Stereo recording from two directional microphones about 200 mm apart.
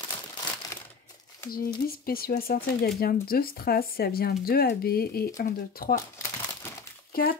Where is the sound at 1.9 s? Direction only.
50° left (ahead or behind).